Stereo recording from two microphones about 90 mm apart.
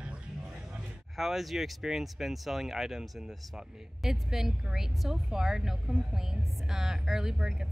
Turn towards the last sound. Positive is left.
turn(degrees=-5)  # may be behind; listen again after turning